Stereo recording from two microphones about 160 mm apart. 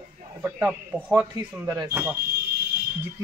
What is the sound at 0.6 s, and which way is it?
Speech, 5° right (ahead or behind).